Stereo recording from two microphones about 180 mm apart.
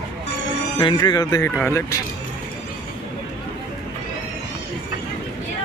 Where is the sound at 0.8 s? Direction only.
25° left (ahead or behind).